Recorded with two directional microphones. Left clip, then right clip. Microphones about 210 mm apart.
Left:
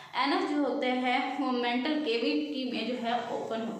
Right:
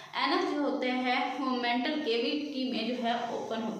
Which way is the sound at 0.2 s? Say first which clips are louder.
Left 1 dB; centre (ahead or behind).